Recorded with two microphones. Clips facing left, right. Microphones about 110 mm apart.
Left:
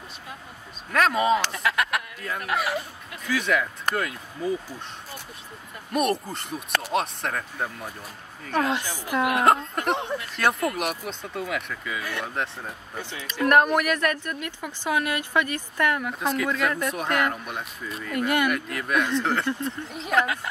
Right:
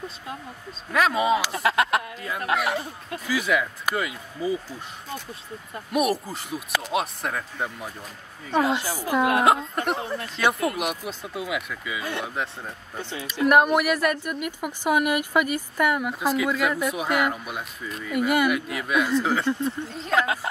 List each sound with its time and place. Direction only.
0.9 s speech: 5° right (ahead or behind)
1.5 s speech: 30° right (ahead or behind)
2.5 s speech: centre (ahead or behind)
5.9 s speech: 5° right (ahead or behind)
9.0 s a woman's voice: 20° right (ahead or behind)
9.4 s speech: 5° right (ahead or behind)
12.0 s speech: 25° right (ahead or behind)
12.4 s speech: centre (ahead or behind)